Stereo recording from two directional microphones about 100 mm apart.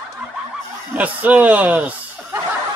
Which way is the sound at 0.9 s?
15° right (ahead or behind).